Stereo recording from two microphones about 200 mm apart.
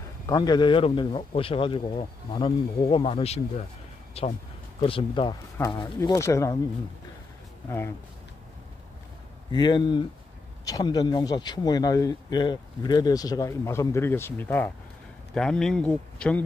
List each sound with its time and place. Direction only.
0.3 s speech: 20° left (ahead or behind)
9.5 s speech: 20° left (ahead or behind); by 16.4 s 5° left (ahead or behind)